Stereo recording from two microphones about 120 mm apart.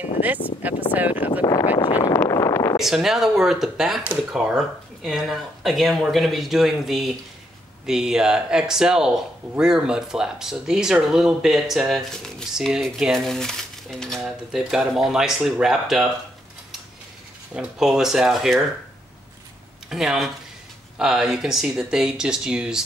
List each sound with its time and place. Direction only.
0.6 s speech: 15° right (ahead or behind)
1.4 s speech: 40° left (ahead or behind)
2.0 s a sound: 25° left (ahead or behind)
2.8 s speech: 5° right (ahead or behind)
17.6 s speech: 5° right (ahead or behind)
19.9 s speech: centre (ahead or behind)